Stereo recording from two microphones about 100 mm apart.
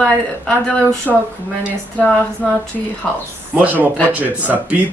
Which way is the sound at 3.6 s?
15° right (ahead or behind).